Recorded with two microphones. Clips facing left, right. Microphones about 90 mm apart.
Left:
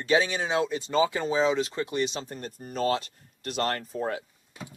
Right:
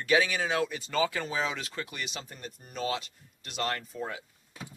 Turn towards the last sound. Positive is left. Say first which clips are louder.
# left 5 dB
turn(degrees=40)  # may be behind; listen again after turning